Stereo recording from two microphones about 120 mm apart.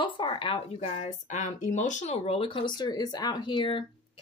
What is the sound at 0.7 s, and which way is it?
Speech, 65° left (ahead or behind).